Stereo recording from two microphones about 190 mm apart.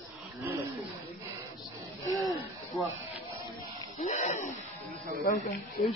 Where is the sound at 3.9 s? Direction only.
40° left (ahead or behind).